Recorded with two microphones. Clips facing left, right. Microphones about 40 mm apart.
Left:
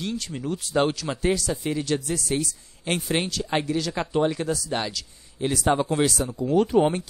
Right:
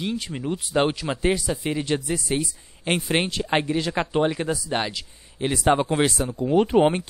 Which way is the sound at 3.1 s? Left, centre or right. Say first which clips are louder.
Right 2 dB; right.